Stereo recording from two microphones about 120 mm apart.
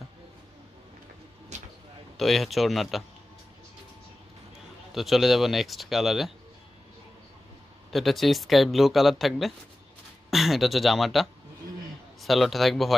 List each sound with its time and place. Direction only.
1.5 s a sound: 75° right (ahead or behind)
2.1 s speech: centre (ahead or behind)
4.9 s speech: centre (ahead or behind)
7.9 s speech: centre (ahead or behind)